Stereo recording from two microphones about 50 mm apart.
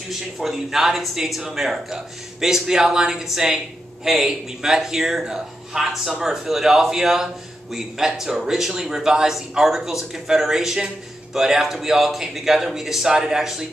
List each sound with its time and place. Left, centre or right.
0.1 s speech: centre